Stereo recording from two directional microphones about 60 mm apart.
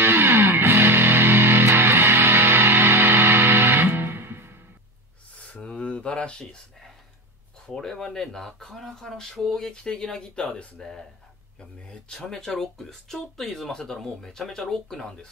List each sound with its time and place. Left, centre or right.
0.0 s music: right
5.5 s a sound: centre
7.6 s speech: centre